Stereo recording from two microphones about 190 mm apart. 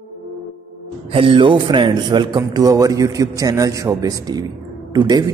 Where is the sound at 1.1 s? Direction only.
25° right (ahead or behind).